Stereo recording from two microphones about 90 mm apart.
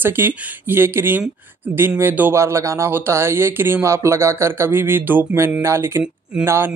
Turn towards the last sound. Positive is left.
turn(degrees=-25)  # may be behind; listen again after turning